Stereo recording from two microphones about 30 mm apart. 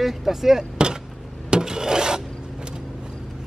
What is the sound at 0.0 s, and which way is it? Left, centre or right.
Speech, centre.